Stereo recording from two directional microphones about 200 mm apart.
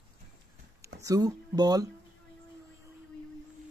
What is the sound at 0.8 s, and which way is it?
Speech, 15° right (ahead or behind).